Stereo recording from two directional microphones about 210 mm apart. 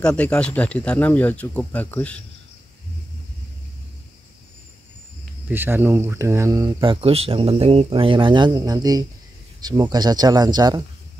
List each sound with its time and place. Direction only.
0.0 s speech: 5° left (ahead or behind)
5.5 s speech: 10° right (ahead or behind)